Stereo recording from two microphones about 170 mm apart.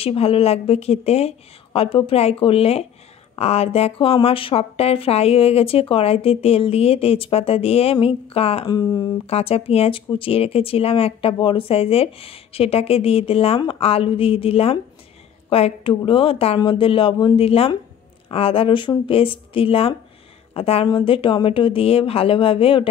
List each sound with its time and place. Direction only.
0.0 s speech: 35° left (ahead or behind)
9.2 s speech: 35° left (ahead or behind)